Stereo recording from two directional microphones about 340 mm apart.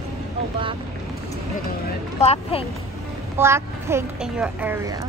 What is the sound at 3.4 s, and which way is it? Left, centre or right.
Speech, centre.